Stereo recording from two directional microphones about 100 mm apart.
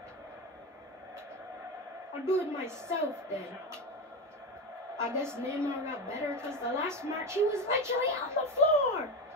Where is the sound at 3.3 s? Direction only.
25° right (ahead or behind).